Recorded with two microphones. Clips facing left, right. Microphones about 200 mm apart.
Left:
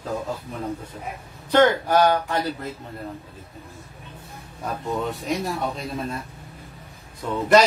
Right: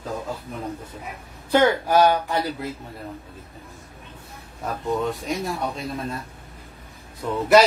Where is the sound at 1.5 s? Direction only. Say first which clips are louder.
Left 1 dB; 10° right (ahead or behind).